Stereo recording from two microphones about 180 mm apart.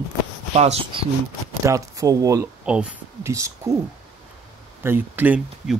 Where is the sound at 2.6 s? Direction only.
5° right (ahead or behind).